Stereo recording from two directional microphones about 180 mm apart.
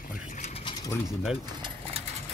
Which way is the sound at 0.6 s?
20° left (ahead or behind).